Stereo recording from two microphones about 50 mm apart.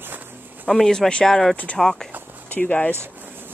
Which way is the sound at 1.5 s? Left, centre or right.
Left.